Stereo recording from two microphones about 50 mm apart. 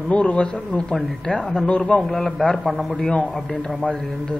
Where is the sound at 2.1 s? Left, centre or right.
Centre.